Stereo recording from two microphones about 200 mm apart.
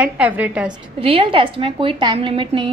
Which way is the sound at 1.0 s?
30° right (ahead or behind).